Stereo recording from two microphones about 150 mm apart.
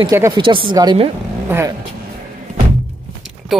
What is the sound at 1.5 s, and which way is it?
Speech, 15° right (ahead or behind).